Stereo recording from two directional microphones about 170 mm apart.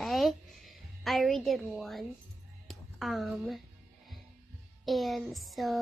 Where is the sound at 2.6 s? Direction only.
Centre (ahead or behind).